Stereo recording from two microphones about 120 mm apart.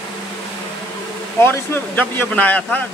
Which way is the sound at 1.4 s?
15° left (ahead or behind).